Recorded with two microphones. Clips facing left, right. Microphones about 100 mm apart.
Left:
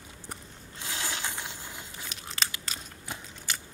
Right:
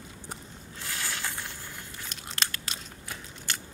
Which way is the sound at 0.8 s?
20° left (ahead or behind).